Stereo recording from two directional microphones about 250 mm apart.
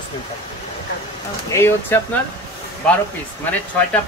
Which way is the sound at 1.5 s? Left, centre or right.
Centre.